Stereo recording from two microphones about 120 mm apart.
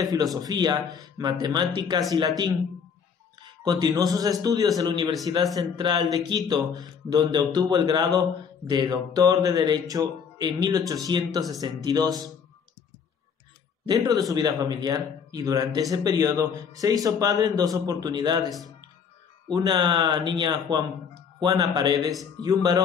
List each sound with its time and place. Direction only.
0.0 s speech: 30° right (ahead or behind)
3.6 s speech: 35° right (ahead or behind)
13.8 s speech: 30° right (ahead or behind)
19.5 s speech: 35° right (ahead or behind)